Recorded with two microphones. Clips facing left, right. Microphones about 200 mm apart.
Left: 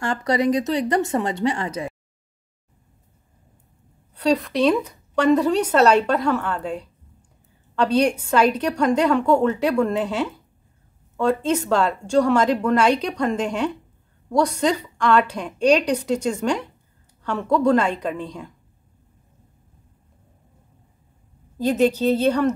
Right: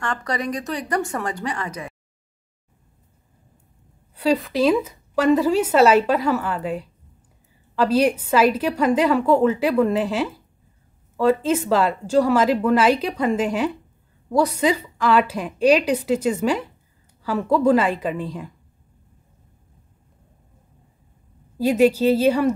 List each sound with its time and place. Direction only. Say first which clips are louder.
0.0 s a woman's voice: left 5 dB; 25° left (ahead or behind)
4.1 s speech: even; 5° right (ahead or behind)
21.5 s speech: right 2 dB; 10° right (ahead or behind)